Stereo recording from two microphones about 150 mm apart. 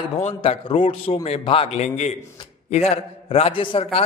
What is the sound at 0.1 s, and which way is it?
A man's voice, 40° left (ahead or behind).